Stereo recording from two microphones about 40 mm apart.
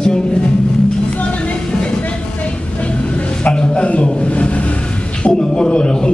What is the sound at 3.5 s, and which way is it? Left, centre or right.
Speech, left.